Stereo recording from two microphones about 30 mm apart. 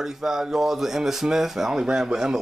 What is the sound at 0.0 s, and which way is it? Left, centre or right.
A man's voice, centre.